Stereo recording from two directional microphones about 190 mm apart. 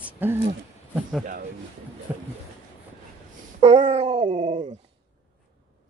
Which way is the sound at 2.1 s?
10° right (ahead or behind).